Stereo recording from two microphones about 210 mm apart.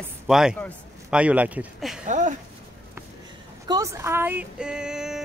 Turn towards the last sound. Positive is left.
turn(degrees=-5)  # may be behind; listen again after turning